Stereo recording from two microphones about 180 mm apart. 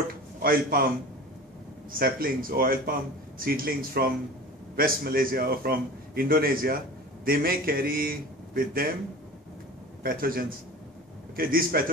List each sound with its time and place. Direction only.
0.4 s a man's voice: 55° right (ahead or behind)
1.9 s a man's voice: 55° right (ahead or behind)
10.0 s a man's voice: 55° right (ahead or behind)